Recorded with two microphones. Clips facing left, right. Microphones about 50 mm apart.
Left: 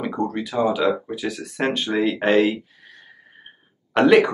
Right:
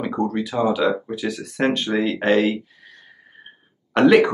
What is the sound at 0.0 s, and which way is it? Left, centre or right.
Speech, centre.